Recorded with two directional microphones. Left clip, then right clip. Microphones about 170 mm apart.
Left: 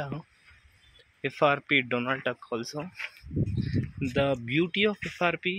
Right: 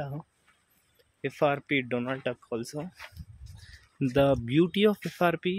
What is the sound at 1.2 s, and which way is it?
Speech, 20° right (ahead or behind).